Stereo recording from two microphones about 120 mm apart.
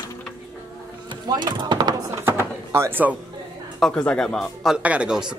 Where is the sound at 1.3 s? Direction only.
35° right (ahead or behind).